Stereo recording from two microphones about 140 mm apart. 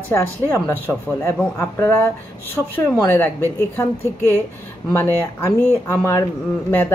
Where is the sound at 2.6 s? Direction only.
5° left (ahead or behind).